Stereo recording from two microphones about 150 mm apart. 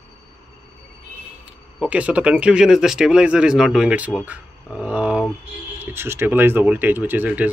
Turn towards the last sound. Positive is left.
turn(degrees=-10)  # may be behind; listen again after turning